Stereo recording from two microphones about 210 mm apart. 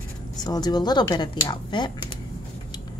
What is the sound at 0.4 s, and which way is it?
Speech, 20° left (ahead or behind).